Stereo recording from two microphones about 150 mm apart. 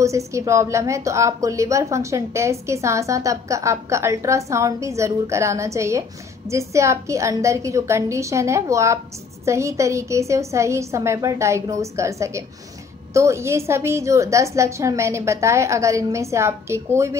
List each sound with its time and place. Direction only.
0.0 s a woman's voice: 20° right (ahead or behind)